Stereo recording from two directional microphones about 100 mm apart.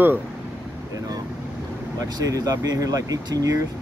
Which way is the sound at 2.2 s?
40° right (ahead or behind).